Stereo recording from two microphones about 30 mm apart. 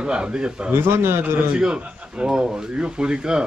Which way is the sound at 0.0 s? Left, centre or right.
Right.